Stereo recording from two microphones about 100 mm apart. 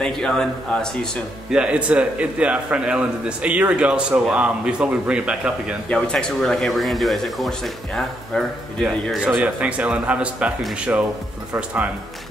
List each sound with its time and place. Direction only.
0.0 s speech: 5° left (ahead or behind)
1.5 s a man's voice: 10° right (ahead or behind)
5.9 s speech: 5° left (ahead or behind)
9.2 s a man's voice: 15° right (ahead or behind)